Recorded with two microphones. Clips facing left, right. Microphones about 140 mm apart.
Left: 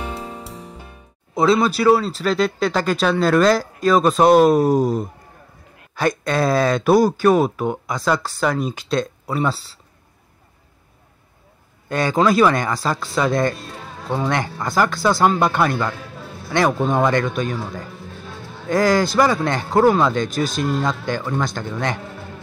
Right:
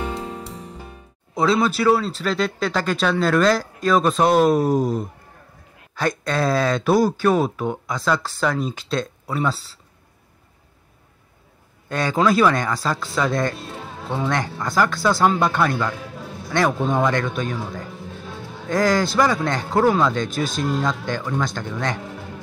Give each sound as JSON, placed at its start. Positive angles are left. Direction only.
{"t": 1.3, "sound": "speech", "side_deg": 5}
{"t": 5.9, "sound": "speech", "side_deg": 15}
{"t": 11.9, "sound": "speech", "side_deg": 5}
{"t": 13.6, "sound": "music", "side_deg": -20}
{"t": 14.2, "sound": "speech", "side_deg": 10}
{"t": 15.1, "sound": "speech", "side_deg": 5}
{"t": 15.5, "sound": "speech", "side_deg": 15}
{"t": 17.8, "sound": "music", "side_deg": -20}
{"t": 18.7, "sound": "speech", "side_deg": 5}
{"t": 21.9, "sound": "a man's voice", "side_deg": -15}